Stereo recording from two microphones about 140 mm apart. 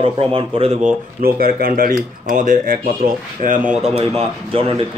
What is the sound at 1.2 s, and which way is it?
Speech, 90° right.